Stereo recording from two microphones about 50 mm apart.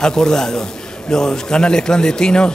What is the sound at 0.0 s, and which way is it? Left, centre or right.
Speech, centre.